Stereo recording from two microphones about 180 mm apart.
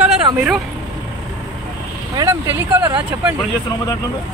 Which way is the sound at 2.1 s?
15° right (ahead or behind).